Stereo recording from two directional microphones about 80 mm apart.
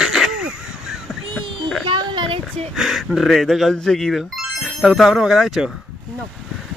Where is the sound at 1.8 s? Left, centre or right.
Right.